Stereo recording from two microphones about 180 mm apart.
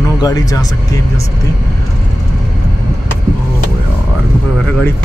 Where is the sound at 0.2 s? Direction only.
20° left (ahead or behind).